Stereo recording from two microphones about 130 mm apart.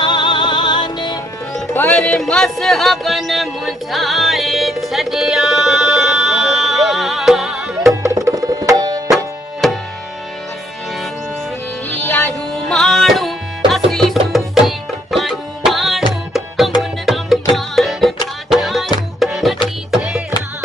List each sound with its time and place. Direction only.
0.0 s music: 35° left (ahead or behind)
1.8 s music: 10° left (ahead or behind)
8.0 s music: 30° right (ahead or behind)
9.1 s music: centre (ahead or behind)
11.9 s music: 15° left (ahead or behind)
12.6 s music: 5° left (ahead or behind)
14.3 s tabla: centre (ahead or behind)
16.3 s music: centre (ahead or behind)